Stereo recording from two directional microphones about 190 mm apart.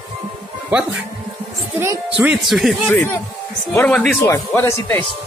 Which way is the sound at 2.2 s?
5° right (ahead or behind).